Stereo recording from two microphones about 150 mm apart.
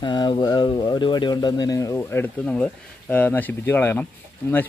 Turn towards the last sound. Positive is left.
turn(degrees=15)  # may be behind; listen again after turning